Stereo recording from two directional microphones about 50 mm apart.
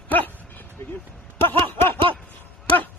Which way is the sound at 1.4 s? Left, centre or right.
Left.